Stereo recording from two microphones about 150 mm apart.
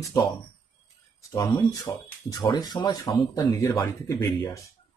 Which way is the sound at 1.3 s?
25° left (ahead or behind).